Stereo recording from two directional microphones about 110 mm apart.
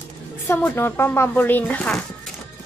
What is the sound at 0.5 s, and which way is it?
Speech, 15° left (ahead or behind).